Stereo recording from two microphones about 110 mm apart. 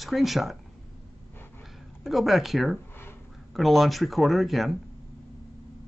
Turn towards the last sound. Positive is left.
turn(degrees=0)  # may be behind; listen again after turning